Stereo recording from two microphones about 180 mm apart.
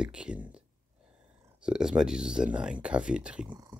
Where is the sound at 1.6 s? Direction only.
5° right (ahead or behind).